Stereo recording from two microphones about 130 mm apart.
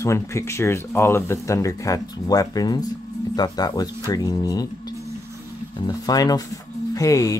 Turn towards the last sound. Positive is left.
turn(degrees=25)  # may be behind; listen again after turning